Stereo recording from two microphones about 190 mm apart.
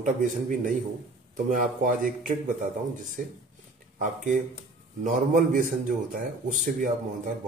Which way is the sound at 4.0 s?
40° right (ahead or behind).